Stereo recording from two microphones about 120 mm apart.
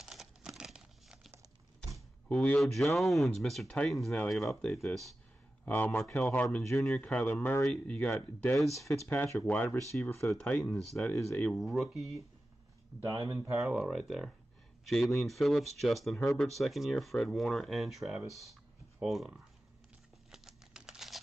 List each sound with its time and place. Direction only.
0.0 s crumpling: centre (ahead or behind)
2.2 s speech: 10° left (ahead or behind)
5.7 s speech: 15° left (ahead or behind)
6.5 s speech: centre (ahead or behind)
7.0 s speech: 10° left (ahead or behind)
8.5 s speech: centre (ahead or behind)
9.1 s speech: 15° left (ahead or behind)
10.4 s speech: 10° left (ahead or behind)
11.5 s speech: centre (ahead or behind)
13.0 s speech: 30° right (ahead or behind)
13.6 s speech: centre (ahead or behind)
20.2 s a sound: 5° right (ahead or behind)